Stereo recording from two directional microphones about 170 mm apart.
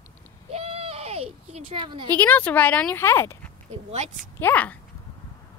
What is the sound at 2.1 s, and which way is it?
A woman's voice, 10° left (ahead or behind).